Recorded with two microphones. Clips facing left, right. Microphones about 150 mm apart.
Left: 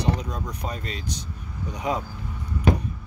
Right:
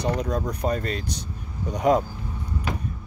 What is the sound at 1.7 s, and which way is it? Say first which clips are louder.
Speech: right 8 dB; 35° right (ahead or behind).